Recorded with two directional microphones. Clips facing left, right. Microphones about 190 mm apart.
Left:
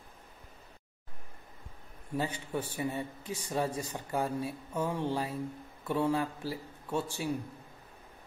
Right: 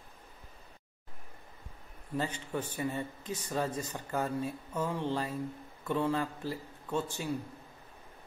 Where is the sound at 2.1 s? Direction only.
10° left (ahead or behind).